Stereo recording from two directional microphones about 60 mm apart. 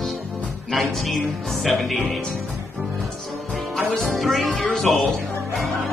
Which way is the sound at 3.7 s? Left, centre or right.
Centre.